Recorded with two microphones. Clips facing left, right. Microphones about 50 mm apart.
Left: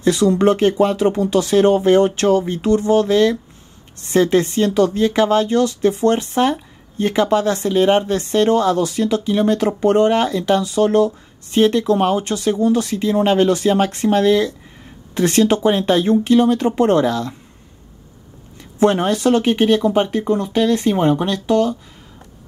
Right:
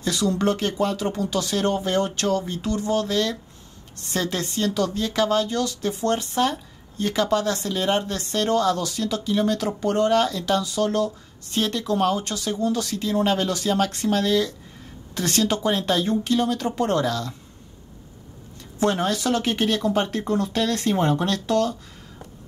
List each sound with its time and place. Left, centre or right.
0.0 s speech: left
18.9 s speech: left